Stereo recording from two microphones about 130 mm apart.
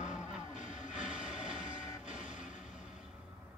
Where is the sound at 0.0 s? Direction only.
65° left (ahead or behind).